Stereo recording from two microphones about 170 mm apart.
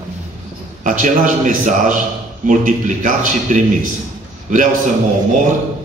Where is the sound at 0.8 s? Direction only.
50° right (ahead or behind).